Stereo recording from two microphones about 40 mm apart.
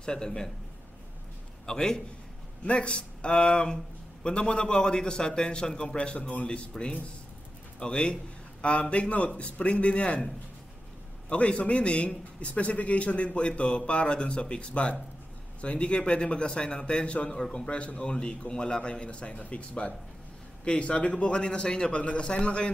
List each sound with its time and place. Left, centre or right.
0.0 s a man's voice: centre
1.7 s a man's voice: centre
2.6 s a man's voice: left
7.8 s a man's voice: left
11.2 s a man's voice: left